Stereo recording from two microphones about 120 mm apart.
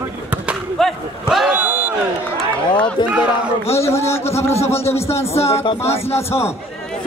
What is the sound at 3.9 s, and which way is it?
Speech, 20° left (ahead or behind).